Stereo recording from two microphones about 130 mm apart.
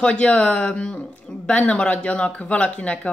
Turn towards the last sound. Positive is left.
turn(degrees=10)  # may be behind; listen again after turning